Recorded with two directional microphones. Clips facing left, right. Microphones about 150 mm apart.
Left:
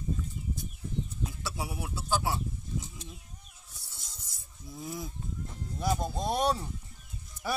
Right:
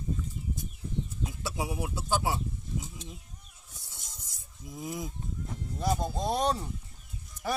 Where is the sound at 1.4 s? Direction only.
15° right (ahead or behind).